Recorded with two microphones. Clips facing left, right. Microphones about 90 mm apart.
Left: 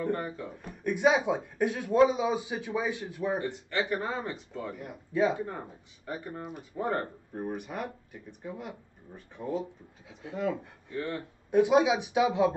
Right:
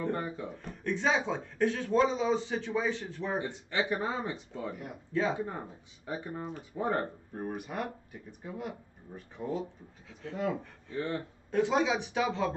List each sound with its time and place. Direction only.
0.6 s speech: 10° left (ahead or behind)
3.3 s speech: 20° right (ahead or behind)
5.1 s speech: 15° left (ahead or behind)
6.0 s speech: 20° right (ahead or behind)
7.3 s speech: centre (ahead or behind)
9.5 s speech: 15° left (ahead or behind)
10.9 s speech: 20° right (ahead or behind)
11.5 s speech: 15° left (ahead or behind)